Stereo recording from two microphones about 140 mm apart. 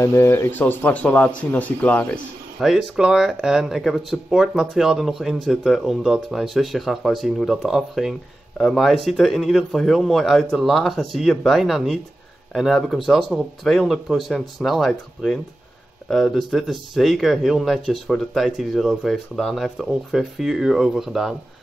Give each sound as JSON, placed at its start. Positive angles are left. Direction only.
{"t": 0.0, "sound": "speech", "side_deg": 15}
{"t": 2.6, "sound": "speech", "side_deg": 0}